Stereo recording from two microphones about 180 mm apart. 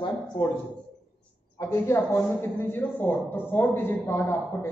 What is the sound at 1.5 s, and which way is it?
A man's voice, 15° left (ahead or behind).